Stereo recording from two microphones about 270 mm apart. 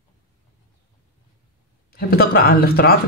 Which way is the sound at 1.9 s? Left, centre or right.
Left.